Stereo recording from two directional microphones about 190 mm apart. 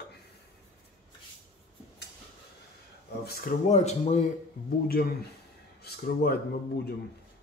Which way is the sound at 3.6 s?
35° left (ahead or behind).